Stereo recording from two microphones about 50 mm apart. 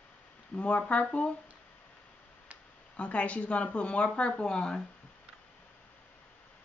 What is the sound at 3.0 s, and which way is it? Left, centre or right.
Speech, left.